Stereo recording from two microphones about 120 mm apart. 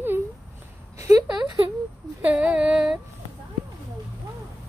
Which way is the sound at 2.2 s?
10° right (ahead or behind).